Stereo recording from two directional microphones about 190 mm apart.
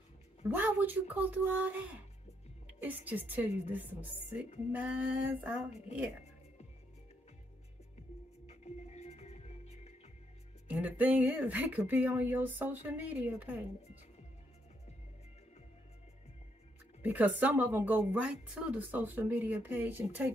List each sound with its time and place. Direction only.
0.5 s speech: 10° right (ahead or behind)
2.6 s music: 10° right (ahead or behind)
3.1 s speech: 10° right (ahead or behind)
8.5 s music: 35° left (ahead or behind)
10.7 s speech: 10° right (ahead or behind)
17.0 s speech: 10° right (ahead or behind)